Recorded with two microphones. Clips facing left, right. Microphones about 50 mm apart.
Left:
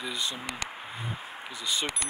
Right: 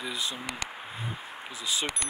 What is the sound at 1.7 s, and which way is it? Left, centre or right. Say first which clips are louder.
Speech: even; centre.